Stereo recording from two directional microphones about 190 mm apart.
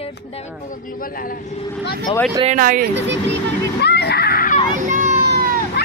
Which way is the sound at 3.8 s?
60° left (ahead or behind).